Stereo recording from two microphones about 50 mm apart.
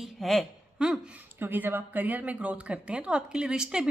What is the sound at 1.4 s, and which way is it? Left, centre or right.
A woman's voice, right.